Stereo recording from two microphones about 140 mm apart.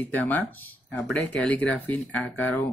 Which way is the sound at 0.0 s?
10° left (ahead or behind).